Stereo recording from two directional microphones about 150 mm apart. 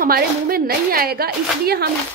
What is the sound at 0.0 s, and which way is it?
A woman's voice, 85° right.